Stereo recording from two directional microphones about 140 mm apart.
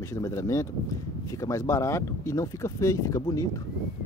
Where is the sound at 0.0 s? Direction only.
20° left (ahead or behind).